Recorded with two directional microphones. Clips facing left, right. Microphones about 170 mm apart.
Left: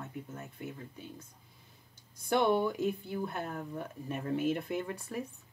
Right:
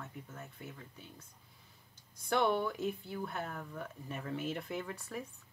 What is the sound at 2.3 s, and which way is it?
Speech, 20° left (ahead or behind).